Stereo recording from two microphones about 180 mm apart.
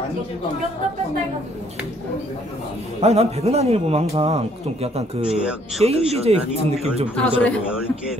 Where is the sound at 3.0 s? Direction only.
35° right (ahead or behind).